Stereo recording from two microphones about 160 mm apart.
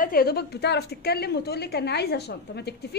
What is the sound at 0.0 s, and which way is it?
A woman's voice, 65° left (ahead or behind).